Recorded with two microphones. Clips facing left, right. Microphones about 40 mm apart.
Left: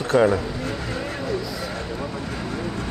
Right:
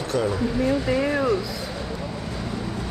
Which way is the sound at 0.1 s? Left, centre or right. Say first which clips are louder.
Left 7 dB; left.